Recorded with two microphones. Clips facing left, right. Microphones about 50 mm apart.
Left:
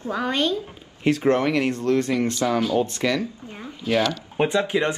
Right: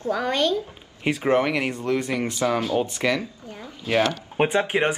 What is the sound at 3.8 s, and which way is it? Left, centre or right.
Speech, right.